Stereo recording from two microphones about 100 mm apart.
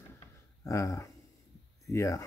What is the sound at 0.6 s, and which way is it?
Speech, 35° left (ahead or behind).